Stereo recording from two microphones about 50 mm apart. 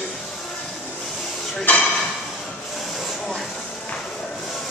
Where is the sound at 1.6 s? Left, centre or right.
Centre.